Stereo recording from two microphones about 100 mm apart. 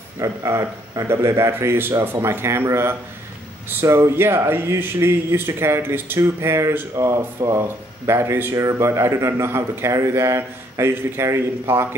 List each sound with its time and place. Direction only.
0.2 s speech: 30° right (ahead or behind)